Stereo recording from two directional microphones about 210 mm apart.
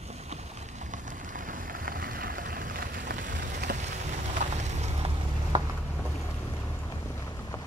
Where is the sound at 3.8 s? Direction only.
35° right (ahead or behind).